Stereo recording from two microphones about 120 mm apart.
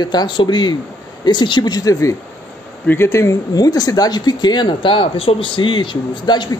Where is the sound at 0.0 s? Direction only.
35° left (ahead or behind).